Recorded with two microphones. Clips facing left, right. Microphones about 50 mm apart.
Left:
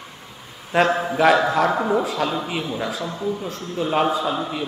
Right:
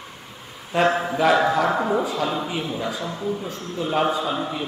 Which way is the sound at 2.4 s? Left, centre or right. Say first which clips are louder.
Left 1 dB; centre.